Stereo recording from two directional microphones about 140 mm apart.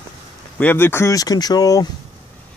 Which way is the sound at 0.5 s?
15° left (ahead or behind).